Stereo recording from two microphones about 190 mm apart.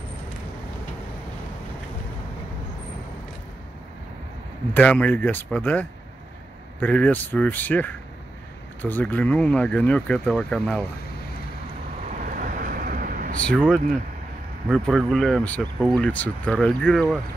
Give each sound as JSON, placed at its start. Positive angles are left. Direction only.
{"t": 4.7, "sound": "speech", "side_deg": 5}
{"t": 6.8, "sound": "speech", "side_deg": 10}
{"t": 12.2, "sound": "vehicle", "side_deg": -45}
{"t": 13.5, "sound": "speech", "side_deg": 5}